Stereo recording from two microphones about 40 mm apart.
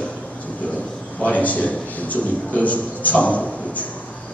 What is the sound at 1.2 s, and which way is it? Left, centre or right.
A man's voice, left.